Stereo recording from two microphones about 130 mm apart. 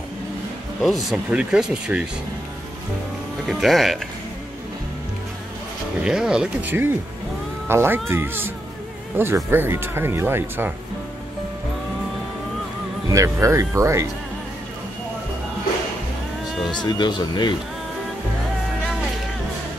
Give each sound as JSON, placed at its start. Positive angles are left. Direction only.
{"t": 0.7, "sound": "speech", "side_deg": 0}
{"t": 3.4, "sound": "speech", "side_deg": 0}
{"t": 6.0, "sound": "speech", "side_deg": -5}
{"t": 6.7, "sound": "speech", "side_deg": -15}
{"t": 13.1, "sound": "speech", "side_deg": -25}
{"t": 16.5, "sound": "a sound", "side_deg": 0}
{"t": 17.0, "sound": "speech", "side_deg": 35}